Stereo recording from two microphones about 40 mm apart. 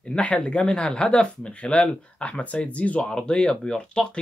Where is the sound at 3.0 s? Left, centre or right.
Left.